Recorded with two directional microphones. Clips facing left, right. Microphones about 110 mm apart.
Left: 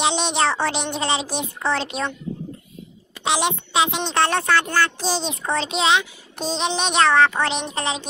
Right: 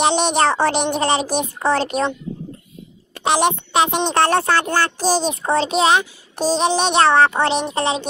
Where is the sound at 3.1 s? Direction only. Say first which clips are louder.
Right 5 dB; 50° right (ahead or behind).